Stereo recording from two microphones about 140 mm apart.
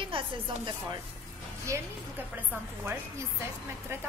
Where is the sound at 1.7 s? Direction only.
20° right (ahead or behind).